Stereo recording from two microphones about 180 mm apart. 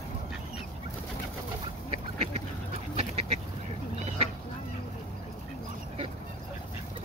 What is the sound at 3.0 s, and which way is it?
Duck, 35° right (ahead or behind).